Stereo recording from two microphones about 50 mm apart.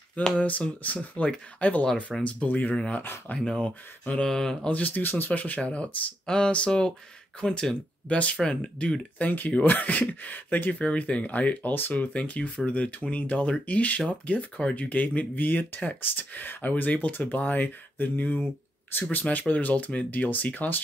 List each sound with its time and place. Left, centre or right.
0.4 s speech: left
3.3 s speech: centre
4.6 s speech: left
5.0 s speech: left
9.6 s speech: left